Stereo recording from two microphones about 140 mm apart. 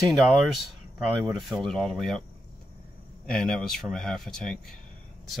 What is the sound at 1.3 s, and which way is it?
Speech, centre (ahead or behind).